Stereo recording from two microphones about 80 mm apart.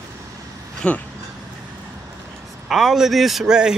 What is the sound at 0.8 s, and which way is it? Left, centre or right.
Speech, centre.